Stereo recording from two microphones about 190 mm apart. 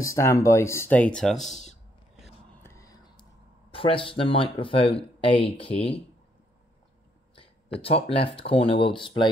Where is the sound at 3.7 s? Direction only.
30° left (ahead or behind).